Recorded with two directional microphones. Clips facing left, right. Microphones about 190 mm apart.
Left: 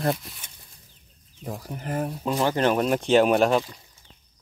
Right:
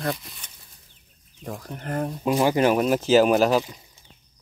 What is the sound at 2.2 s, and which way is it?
Speech, 10° right (ahead or behind).